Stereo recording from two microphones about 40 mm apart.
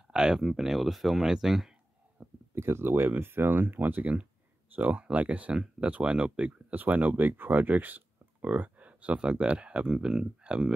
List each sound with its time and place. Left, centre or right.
0.1 s speech: centre
2.1 s speech: right
4.0 s speech: right
4.7 s speech: right
5.5 s speech: right
5.9 s speech: right
6.7 s speech: right
9.1 s speech: right